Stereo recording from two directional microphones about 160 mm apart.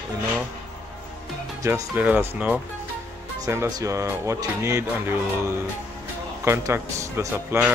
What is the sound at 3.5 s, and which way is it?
Speech, 20° right (ahead or behind).